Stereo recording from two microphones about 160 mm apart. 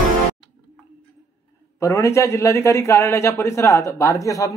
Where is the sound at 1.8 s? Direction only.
20° left (ahead or behind).